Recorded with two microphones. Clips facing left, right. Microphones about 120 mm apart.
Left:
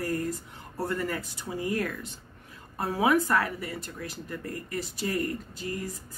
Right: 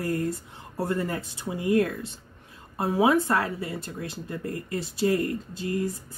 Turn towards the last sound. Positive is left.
turn(degrees=-25)  # may be behind; listen again after turning